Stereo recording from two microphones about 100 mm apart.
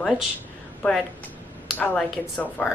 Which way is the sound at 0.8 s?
15° left (ahead or behind).